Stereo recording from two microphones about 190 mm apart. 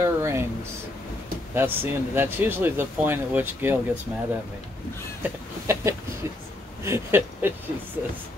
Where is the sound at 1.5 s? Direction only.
10° right (ahead or behind).